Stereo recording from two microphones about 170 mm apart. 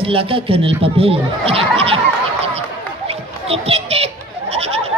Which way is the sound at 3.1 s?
35° right (ahead or behind).